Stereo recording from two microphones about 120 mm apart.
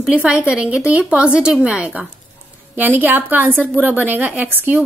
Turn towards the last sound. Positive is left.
turn(degrees=-15)  # may be behind; listen again after turning